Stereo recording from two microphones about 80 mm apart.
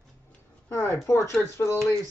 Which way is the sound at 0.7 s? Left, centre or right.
Left.